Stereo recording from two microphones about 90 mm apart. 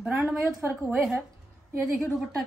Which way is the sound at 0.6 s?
25° right (ahead or behind).